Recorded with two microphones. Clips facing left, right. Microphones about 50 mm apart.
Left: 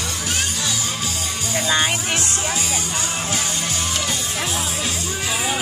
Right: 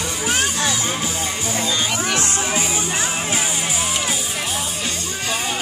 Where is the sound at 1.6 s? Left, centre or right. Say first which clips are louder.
Left 3 dB; left.